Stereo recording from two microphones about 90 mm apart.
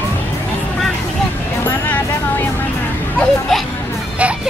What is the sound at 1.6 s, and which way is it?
Music, 20° left (ahead or behind).